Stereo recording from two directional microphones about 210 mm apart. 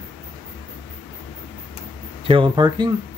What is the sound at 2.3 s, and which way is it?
Speech, 20° right (ahead or behind).